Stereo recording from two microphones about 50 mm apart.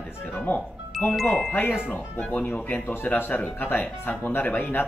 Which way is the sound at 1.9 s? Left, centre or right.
Left.